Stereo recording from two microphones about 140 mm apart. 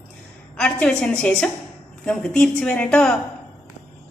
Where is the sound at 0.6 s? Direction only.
5° left (ahead or behind).